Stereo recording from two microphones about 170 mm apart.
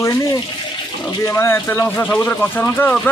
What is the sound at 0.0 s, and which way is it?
Water, 20° left (ahead or behind).